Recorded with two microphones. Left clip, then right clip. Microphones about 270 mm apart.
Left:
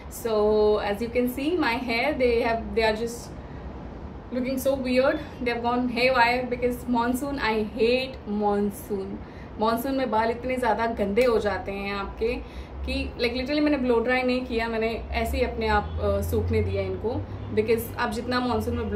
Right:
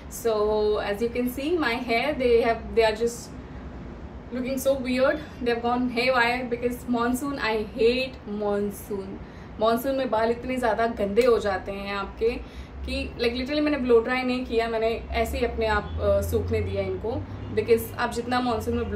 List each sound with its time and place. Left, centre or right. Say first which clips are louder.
0.2 s a woman's voice: left 2 dB; centre
4.5 s a woman's voice: right 1 dB; centre
17.0 s speech: left 1 dB; right
17.6 s a woman's voice: right 1 dB; centre